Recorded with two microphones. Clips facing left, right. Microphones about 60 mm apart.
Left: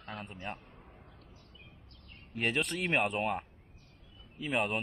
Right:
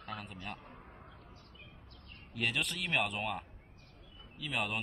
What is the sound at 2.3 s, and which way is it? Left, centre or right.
Speech, left.